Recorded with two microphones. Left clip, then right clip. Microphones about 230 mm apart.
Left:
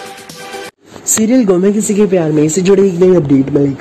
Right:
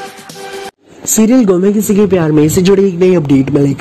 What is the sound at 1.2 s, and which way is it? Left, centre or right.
Speech, centre.